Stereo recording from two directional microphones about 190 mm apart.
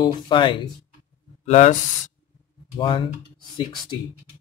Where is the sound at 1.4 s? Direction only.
35° left (ahead or behind).